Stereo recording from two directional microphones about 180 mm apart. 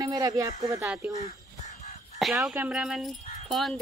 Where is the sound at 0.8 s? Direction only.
5° right (ahead or behind).